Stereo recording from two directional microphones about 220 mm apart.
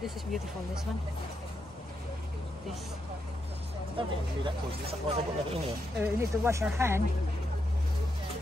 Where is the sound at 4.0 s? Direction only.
25° right (ahead or behind).